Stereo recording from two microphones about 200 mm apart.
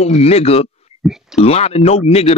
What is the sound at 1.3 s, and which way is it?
Speech, 30° left (ahead or behind).